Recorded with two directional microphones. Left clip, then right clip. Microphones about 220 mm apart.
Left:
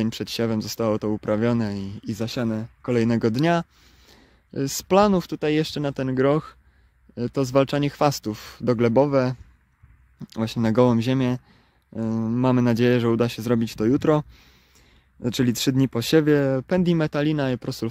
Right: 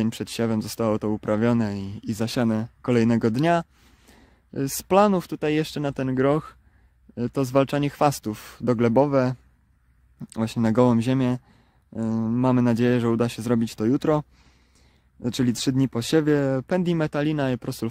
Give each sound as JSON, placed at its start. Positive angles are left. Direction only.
{"t": 0.0, "sound": "speech", "side_deg": 0}
{"t": 15.2, "sound": "speech", "side_deg": 5}